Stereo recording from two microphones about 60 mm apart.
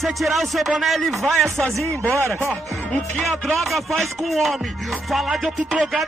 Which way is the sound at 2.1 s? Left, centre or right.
Right.